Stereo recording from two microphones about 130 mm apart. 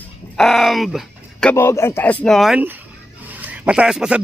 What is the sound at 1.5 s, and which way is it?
Speech, 20° left (ahead or behind).